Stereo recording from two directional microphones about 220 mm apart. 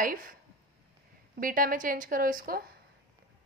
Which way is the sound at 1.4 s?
40° right (ahead or behind).